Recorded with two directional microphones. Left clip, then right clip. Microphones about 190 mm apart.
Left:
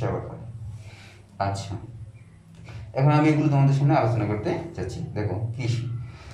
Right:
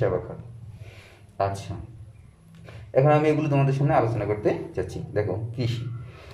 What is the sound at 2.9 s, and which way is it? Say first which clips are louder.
Speech: right 3 dB; 40° right (ahead or behind).